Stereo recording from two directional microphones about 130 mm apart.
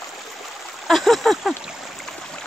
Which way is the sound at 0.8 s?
Centre (ahead or behind).